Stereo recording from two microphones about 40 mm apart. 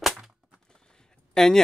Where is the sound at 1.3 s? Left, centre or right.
Centre.